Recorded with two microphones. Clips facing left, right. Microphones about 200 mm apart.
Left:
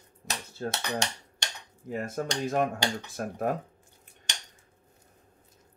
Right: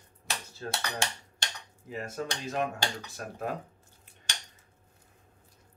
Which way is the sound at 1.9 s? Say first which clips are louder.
Left 4 dB; 50° left (ahead or behind).